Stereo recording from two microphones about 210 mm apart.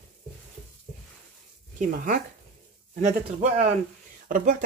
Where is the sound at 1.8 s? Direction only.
40° right (ahead or behind).